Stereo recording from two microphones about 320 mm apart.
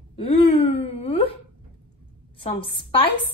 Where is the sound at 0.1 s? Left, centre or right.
Centre.